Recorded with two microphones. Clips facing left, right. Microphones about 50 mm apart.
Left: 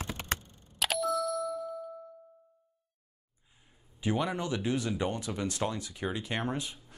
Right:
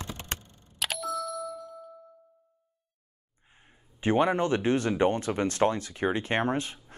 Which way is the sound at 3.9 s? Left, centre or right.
Right.